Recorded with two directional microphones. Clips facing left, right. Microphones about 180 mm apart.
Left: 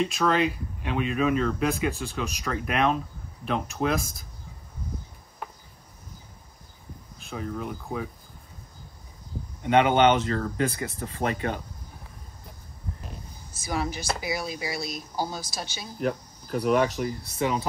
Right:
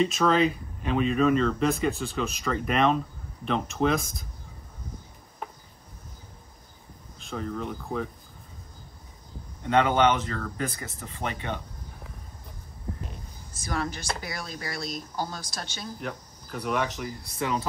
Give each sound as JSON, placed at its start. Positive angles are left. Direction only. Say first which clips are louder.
{"t": 0.0, "sound": "speech", "louder": "right 2 dB", "side_deg": 0}
{"t": 7.2, "sound": "speech", "louder": "right 1 dB", "side_deg": 5}
{"t": 9.6, "sound": "speech", "louder": "left 2 dB", "side_deg": 20}
{"t": 13.0, "sound": "speech", "louder": "right 1 dB", "side_deg": 5}
{"t": 16.0, "sound": "speech", "louder": "left 8 dB", "side_deg": 35}
{"t": 17.4, "sound": "speech", "louder": "left 2 dB", "side_deg": 20}